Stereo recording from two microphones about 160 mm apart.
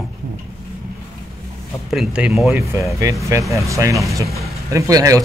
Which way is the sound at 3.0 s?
20° right (ahead or behind).